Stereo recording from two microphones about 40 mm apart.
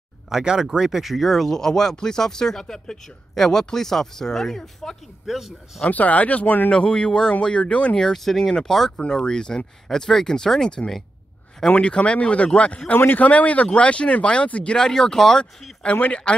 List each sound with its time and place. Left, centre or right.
0.3 s speech: centre
1.0 s speech: centre
1.5 s speech: centre
5.2 s speech: centre
5.9 s speech: left
6.7 s speech: left
8.0 s speech: centre
11.7 s speech: left
12.9 s speech: left
13.2 s speech: left
14.8 s speech: centre
15.8 s speech: left